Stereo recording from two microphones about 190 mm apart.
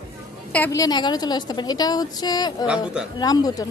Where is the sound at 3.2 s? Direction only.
20° left (ahead or behind).